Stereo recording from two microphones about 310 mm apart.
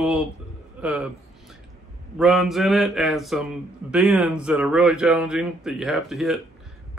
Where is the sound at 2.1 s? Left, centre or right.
Centre.